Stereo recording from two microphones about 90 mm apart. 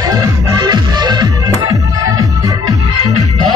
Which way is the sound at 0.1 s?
50° right (ahead or behind).